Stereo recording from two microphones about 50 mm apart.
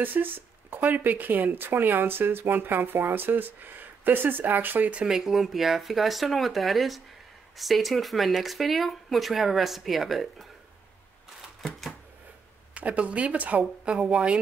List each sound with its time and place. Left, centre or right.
0.0 s speech: right
5.0 s speech: centre
12.7 s speech: right